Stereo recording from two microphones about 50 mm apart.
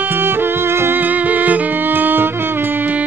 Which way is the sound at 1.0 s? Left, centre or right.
Right.